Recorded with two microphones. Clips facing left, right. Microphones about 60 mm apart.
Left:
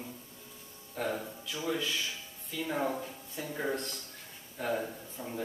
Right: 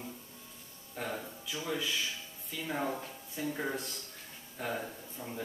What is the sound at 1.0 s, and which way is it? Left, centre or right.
Speech, centre.